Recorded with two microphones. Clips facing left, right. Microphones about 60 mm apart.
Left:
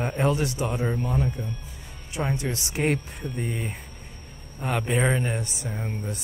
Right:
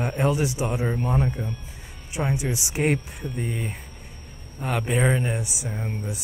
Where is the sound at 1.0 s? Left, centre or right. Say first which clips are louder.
Right 2 dB; right.